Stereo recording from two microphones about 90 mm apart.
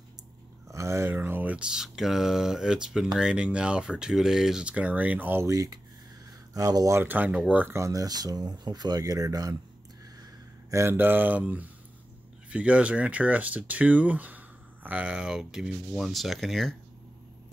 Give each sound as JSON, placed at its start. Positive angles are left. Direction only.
{"t": 0.7, "sound": "speech", "side_deg": -35}
{"t": 5.4, "sound": "speech", "side_deg": -40}
{"t": 7.0, "sound": "speech", "side_deg": -20}
{"t": 7.6, "sound": "speech", "side_deg": -30}
{"t": 10.7, "sound": "speech", "side_deg": -30}